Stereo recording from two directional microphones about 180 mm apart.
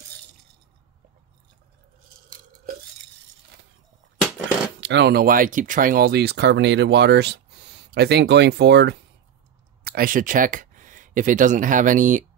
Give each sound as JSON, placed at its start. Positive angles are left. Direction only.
{"t": 4.7, "sound": "speech", "side_deg": -75}
{"t": 9.8, "sound": "speech", "side_deg": -50}